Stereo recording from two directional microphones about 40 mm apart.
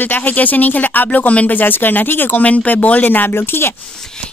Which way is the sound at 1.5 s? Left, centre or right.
Left.